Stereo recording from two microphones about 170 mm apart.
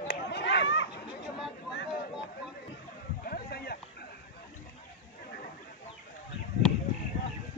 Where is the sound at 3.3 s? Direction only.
65° left (ahead or behind).